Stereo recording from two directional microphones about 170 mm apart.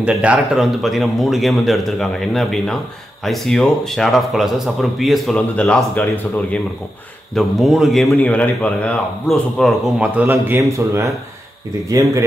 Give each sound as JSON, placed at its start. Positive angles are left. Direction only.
{"t": 0.0, "sound": "a man's voice", "side_deg": -5}
{"t": 7.3, "sound": "a man's voice", "side_deg": 0}